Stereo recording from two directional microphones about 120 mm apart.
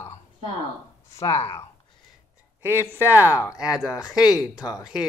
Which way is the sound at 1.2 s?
60° left (ahead or behind).